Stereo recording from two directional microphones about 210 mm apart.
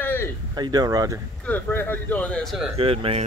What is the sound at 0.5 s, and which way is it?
Speech, 20° right (ahead or behind).